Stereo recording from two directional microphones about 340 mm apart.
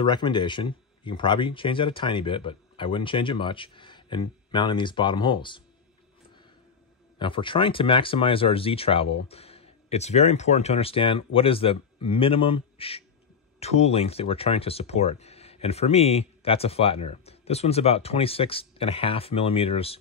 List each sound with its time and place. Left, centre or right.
0.0 s speech: centre
7.2 s speech: centre